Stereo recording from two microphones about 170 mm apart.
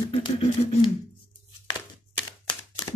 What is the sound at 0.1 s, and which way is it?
Speech, 35° left (ahead or behind).